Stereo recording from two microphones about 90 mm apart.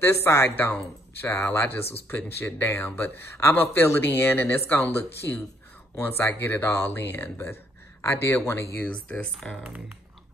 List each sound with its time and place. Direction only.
0.0 s speech: 30° left (ahead or behind)
8.8 s speech: 15° left (ahead or behind)